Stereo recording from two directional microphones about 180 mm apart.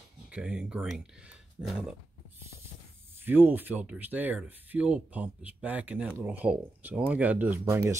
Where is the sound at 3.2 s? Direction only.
10° right (ahead or behind).